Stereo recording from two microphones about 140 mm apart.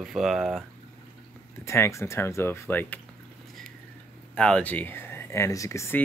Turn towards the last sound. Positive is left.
turn(degrees=20)  # may be behind; listen again after turning